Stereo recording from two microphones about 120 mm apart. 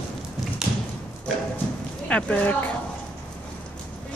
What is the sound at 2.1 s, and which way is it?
Speech, 10° left (ahead or behind).